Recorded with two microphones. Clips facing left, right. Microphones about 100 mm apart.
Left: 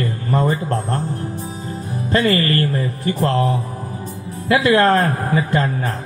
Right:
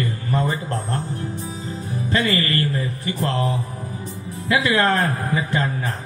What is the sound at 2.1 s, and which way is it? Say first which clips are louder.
Speech: left 5 dB; 40° left (ahead or behind).